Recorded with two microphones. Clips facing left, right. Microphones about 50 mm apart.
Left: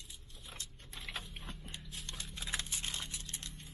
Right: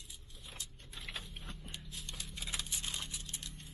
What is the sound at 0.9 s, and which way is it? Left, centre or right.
Vehicle, left.